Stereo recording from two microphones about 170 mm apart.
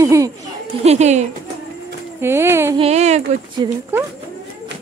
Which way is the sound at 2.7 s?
40° right (ahead or behind).